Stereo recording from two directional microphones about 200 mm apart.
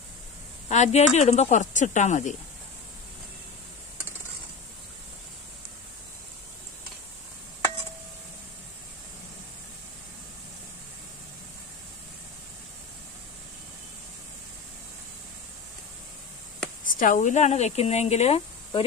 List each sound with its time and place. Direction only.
0.7 s speech: 35° left (ahead or behind)
16.8 s speech: 40° left (ahead or behind)